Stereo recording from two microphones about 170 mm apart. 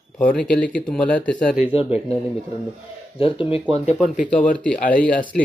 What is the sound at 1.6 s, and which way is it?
Speech, 35° left (ahead or behind).